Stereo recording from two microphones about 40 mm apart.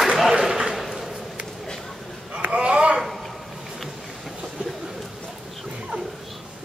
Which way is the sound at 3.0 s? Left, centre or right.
Centre.